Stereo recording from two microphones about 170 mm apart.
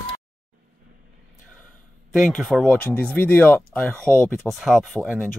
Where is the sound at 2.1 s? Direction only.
Centre (ahead or behind).